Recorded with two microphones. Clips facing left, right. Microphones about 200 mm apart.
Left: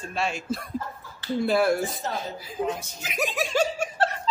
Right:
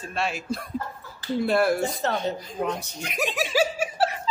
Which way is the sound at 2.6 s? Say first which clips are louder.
Even; 65° right (ahead or behind).